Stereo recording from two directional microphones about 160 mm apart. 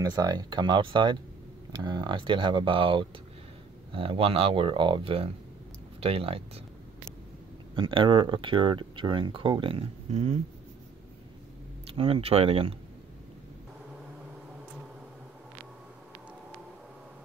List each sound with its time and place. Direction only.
0.0 s speech: 25° right (ahead or behind)
7.7 s speech: 30° right (ahead or behind)
11.9 s speech: 35° right (ahead or behind)